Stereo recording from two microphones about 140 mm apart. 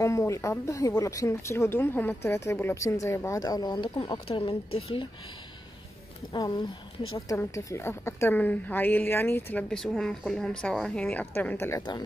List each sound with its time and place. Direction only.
0.0 s speech: 20° left (ahead or behind); by 5.0 s 40° left (ahead or behind)
6.3 s a woman's voice: 30° left (ahead or behind); by 11.8 s 15° left (ahead or behind)